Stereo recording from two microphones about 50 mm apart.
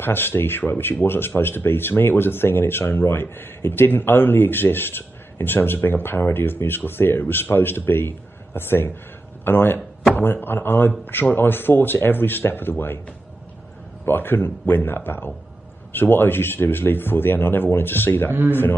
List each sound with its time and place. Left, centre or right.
0.0 s speech: left
14.0 s speech: left